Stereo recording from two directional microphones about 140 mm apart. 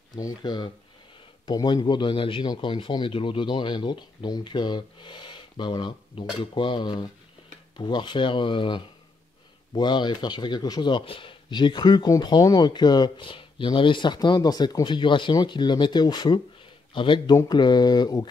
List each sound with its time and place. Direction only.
0.1 s speech: 25° left (ahead or behind)